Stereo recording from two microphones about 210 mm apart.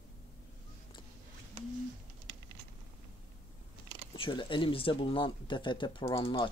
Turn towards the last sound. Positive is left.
turn(degrees=25)  # may be behind; listen again after turning